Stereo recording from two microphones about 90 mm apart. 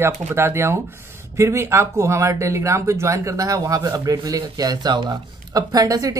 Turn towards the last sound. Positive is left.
turn(degrees=-40)  # may be behind; listen again after turning